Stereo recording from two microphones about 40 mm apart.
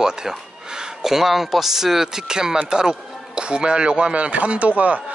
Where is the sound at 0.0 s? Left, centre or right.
Centre.